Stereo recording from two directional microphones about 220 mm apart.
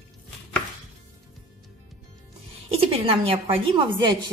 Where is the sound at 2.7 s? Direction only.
25° right (ahead or behind).